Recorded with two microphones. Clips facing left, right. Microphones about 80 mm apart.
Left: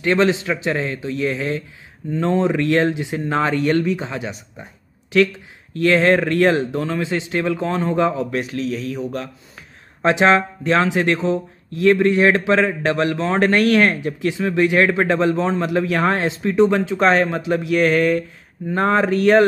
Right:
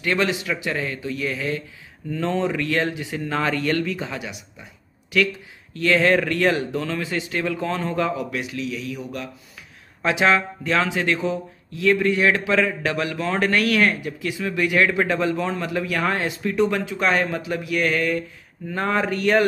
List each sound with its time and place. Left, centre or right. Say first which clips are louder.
0.0 s a man's voice: left 6 dB; left
5.8 s a man's voice: left 3 dB; left